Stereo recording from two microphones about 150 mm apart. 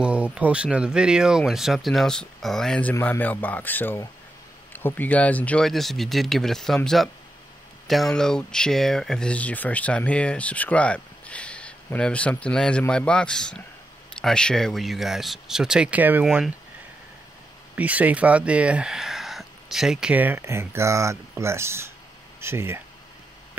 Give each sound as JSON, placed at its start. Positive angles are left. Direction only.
{"t": 0.0, "sound": "speech", "side_deg": -5}
{"t": 16.3, "sound": "speech", "side_deg": 0}
{"t": 17.7, "sound": "speech", "side_deg": -10}